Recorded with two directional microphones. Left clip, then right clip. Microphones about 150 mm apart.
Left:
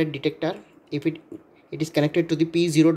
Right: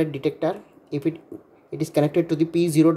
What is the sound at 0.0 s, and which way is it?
Speech, 5° right (ahead or behind).